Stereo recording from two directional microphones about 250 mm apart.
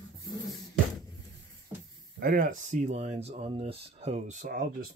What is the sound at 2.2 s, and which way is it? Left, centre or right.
Speech, right.